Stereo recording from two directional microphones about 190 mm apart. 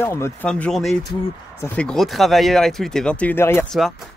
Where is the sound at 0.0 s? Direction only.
15° left (ahead or behind).